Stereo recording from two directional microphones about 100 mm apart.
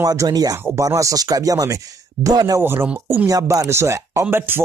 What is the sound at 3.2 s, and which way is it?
Speech, 35° right (ahead or behind).